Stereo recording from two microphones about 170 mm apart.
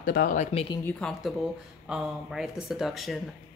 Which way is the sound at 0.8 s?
5° left (ahead or behind).